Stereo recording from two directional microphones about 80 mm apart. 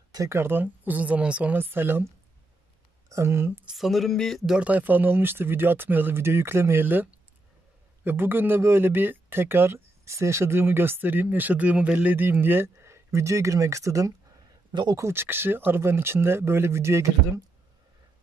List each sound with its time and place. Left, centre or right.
0.3 s speech: right
3.1 s speech: right
3.7 s speech: centre
4.5 s speech: centre; by 14.1 s right
14.7 s speech: right
15.0 s speech: right